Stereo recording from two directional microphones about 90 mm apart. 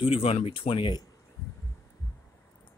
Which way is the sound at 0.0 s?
90° left.